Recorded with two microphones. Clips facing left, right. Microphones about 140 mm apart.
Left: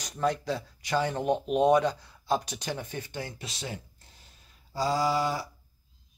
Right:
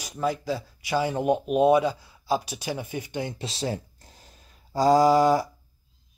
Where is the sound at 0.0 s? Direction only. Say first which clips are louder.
Right 1 dB; 5° right (ahead or behind).